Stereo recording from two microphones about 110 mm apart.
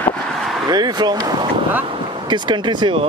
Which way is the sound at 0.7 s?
40° right (ahead or behind).